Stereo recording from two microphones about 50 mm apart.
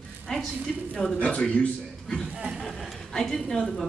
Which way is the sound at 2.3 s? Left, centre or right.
Centre.